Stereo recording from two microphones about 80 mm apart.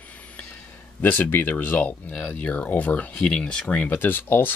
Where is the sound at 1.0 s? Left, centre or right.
Left.